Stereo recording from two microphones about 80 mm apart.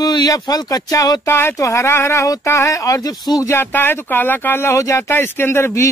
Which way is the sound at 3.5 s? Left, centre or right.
Left.